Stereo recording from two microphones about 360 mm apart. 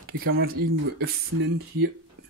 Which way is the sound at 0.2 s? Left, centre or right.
Right.